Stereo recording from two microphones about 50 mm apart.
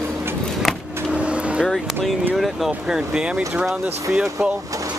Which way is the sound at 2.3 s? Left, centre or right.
Centre.